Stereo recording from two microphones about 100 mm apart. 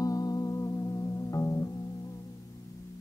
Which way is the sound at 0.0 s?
35° left (ahead or behind).